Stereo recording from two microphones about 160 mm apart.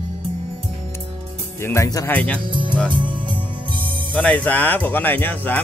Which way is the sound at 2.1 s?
10° left (ahead or behind).